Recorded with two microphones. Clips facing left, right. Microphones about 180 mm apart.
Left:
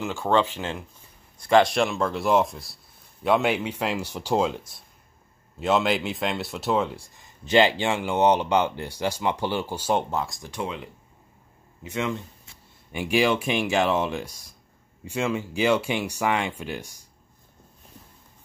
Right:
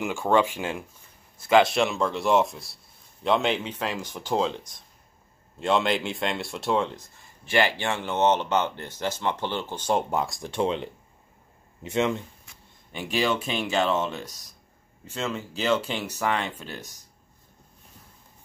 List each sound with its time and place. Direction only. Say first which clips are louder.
0.0 s speech: even; 15° right (ahead or behind)
1.5 s speech: left 1 dB; centre (ahead or behind)
10.4 s speech: right 6 dB; 25° right (ahead or behind)
12.9 s speech: left 4 dB; 10° left (ahead or behind)